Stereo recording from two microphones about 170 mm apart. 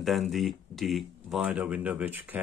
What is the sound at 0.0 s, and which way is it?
Speech, centre (ahead or behind).